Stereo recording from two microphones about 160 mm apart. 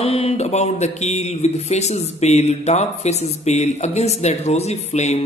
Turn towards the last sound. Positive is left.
turn(degrees=45)  # may be behind; listen again after turning